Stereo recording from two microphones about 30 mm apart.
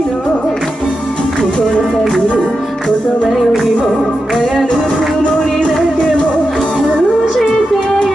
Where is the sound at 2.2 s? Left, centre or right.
Left.